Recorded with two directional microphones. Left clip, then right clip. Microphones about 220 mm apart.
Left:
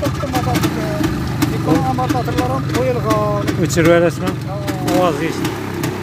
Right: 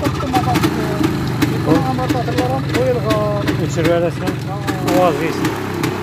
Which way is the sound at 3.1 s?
35° left (ahead or behind).